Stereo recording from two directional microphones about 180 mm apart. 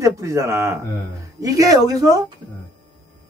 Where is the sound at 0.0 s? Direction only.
15° right (ahead or behind).